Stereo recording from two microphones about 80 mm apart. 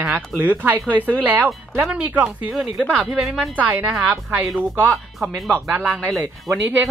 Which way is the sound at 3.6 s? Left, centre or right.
Right.